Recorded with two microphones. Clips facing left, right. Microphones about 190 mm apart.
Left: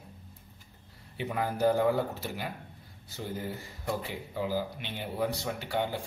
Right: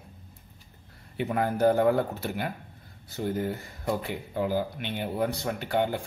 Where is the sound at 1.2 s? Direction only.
55° right (ahead or behind).